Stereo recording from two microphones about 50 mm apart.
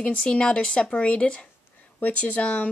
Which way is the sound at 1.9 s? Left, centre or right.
Left.